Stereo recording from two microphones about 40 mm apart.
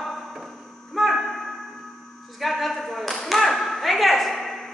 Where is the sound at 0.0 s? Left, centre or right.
Centre.